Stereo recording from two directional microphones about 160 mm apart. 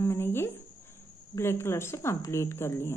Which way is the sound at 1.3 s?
15° left (ahead or behind).